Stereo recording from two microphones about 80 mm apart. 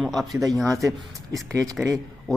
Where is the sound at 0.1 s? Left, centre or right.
Centre.